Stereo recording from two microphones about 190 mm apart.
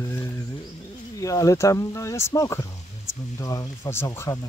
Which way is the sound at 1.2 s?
15° left (ahead or behind).